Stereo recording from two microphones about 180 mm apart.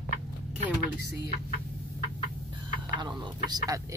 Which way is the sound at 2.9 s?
25° right (ahead or behind).